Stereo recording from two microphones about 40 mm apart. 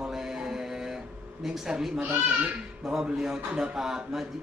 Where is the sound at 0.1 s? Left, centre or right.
Centre.